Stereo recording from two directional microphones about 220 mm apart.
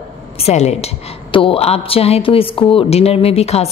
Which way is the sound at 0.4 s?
30° left (ahead or behind).